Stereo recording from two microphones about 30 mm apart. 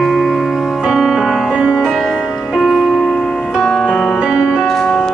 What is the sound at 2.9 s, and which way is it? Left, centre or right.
Music, centre.